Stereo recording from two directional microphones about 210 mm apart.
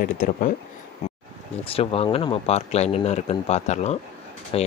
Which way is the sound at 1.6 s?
25° left (ahead or behind).